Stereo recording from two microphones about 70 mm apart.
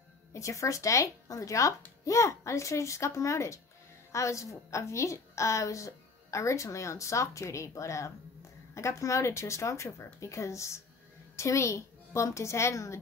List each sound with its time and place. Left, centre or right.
0.3 s a woman's voice: left